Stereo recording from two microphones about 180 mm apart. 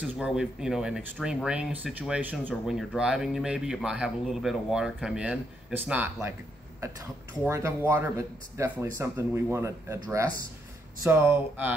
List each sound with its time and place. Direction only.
0.0 s speech: 5° right (ahead or behind)